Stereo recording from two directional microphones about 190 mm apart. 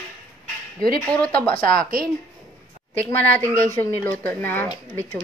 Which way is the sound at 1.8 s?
50° right (ahead or behind).